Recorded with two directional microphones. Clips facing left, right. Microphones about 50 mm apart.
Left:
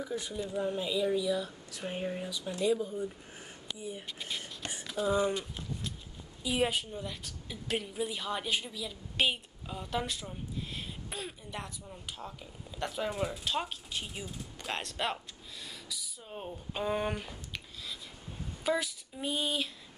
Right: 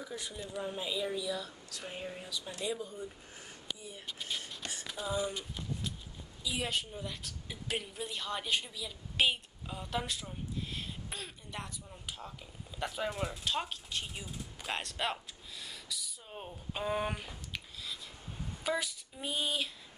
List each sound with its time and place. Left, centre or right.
0.0 s a woman's voice: centre
1.8 s speech: left
2.1 s a woman's voice: centre
3.8 s speech: left
6.7 s a woman's voice: centre
18.6 s a sound: centre